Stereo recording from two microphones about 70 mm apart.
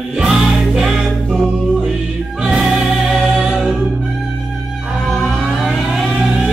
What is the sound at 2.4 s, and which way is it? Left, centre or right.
Music, centre.